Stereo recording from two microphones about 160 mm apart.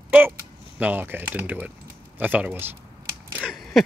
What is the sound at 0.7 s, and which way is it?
Speech, 10° right (ahead or behind).